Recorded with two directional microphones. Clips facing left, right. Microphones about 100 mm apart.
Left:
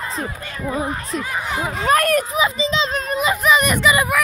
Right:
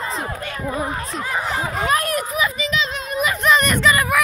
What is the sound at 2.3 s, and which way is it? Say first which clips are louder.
Speech: left 3 dB; 30° left (ahead or behind).